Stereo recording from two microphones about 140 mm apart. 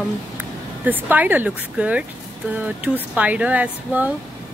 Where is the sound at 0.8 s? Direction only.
10° right (ahead or behind).